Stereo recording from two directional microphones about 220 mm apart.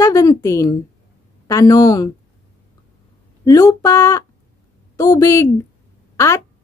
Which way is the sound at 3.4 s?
15° left (ahead or behind).